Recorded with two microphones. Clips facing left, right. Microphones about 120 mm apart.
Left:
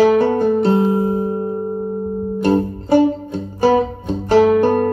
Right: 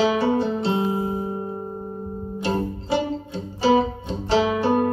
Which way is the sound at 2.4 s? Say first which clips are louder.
Left 8 dB; 50° left (ahead or behind).